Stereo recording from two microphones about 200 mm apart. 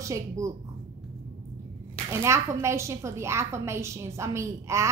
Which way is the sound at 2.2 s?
15° right (ahead or behind).